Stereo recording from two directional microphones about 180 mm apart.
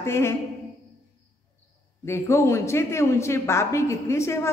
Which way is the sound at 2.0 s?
15° left (ahead or behind).